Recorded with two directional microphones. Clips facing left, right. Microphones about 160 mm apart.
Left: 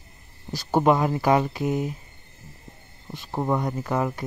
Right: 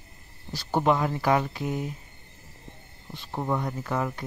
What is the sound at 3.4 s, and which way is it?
Speech, 25° left (ahead or behind).